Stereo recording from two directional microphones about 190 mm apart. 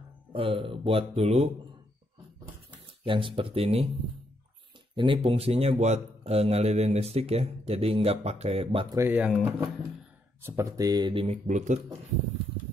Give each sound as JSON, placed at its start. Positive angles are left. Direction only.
{"t": 0.3, "sound": "speech", "side_deg": -30}
{"t": 3.1, "sound": "speech", "side_deg": -25}
{"t": 4.9, "sound": "a man's voice", "side_deg": -25}
{"t": 8.9, "sound": "speech", "side_deg": -10}